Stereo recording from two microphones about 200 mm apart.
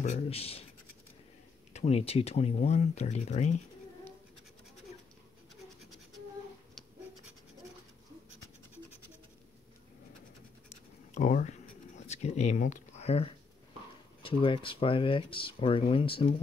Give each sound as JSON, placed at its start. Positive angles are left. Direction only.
{"t": 0.0, "sound": "speech", "side_deg": 30}
{"t": 1.7, "sound": "speech", "side_deg": 35}
{"t": 10.7, "sound": "writing", "side_deg": 40}
{"t": 12.1, "sound": "speech", "side_deg": 35}